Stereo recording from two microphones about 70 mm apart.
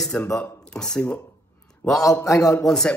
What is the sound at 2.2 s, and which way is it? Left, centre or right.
Speech, left.